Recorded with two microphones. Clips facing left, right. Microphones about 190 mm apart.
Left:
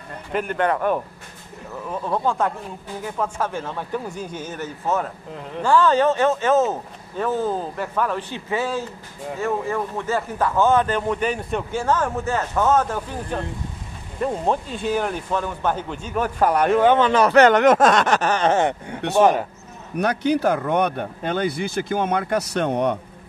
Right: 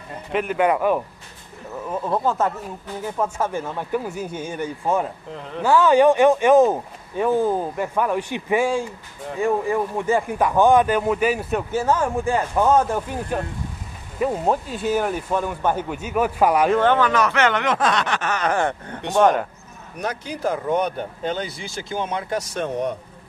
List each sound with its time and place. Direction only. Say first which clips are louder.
0.3 s speech: right 2 dB; centre (ahead or behind)
16.7 s a man's voice: left 2 dB; 15° left (ahead or behind)
17.0 s speech: left 5 dB; 30° left (ahead or behind)
19.1 s a man's voice: even; 5° left (ahead or behind)
20.0 s speech: left 7 dB; 70° left (ahead or behind)